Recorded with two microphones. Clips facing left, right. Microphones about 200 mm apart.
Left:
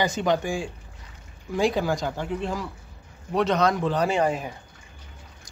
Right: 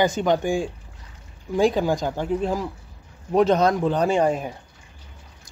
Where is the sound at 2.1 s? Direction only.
40° right (ahead or behind).